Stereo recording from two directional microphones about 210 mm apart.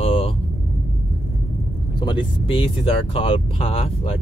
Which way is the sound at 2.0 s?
20° left (ahead or behind).